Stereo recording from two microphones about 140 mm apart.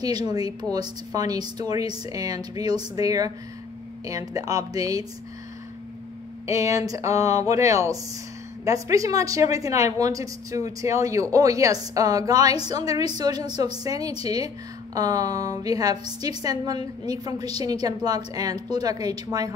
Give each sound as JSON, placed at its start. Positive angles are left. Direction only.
{"t": 0.0, "sound": "a woman's voice", "side_deg": -30}
{"t": 6.4, "sound": "a woman's voice", "side_deg": -25}